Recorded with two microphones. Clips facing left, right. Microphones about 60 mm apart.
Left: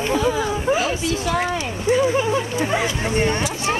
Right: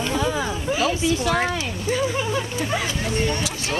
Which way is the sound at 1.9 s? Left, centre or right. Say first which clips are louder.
Left 6 dB; left.